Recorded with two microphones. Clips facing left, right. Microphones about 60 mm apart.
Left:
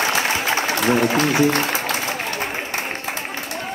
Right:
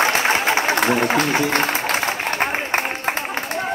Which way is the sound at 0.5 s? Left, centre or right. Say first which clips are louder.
Right 3 dB; right.